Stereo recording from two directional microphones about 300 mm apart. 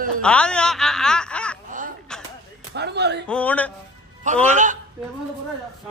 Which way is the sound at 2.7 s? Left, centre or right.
Right.